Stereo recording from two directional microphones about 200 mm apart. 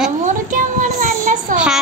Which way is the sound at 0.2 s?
40° right (ahead or behind).